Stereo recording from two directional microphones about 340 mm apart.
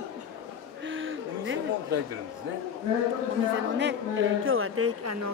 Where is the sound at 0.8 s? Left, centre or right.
Right.